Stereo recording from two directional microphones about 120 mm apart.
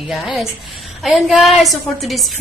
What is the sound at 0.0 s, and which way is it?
A woman's voice, centre (ahead or behind).